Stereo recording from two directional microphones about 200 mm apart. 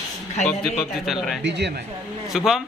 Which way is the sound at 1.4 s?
60° right (ahead or behind).